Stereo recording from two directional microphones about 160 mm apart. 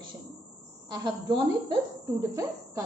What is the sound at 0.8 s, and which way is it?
A woman's voice, 25° right (ahead or behind).